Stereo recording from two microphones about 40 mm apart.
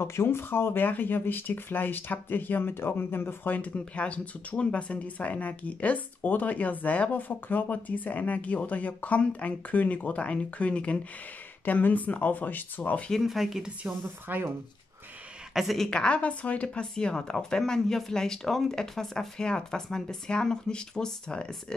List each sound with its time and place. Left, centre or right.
0.0 s speech: left
0.7 s speech: left
3.4 s speech: left
11.6 s speech: left
13.2 s speech: centre
13.8 s speech: right
15.5 s a woman's voice: centre
15.9 s a woman's voice: left
16.2 s speech: left; by 21.7 s centre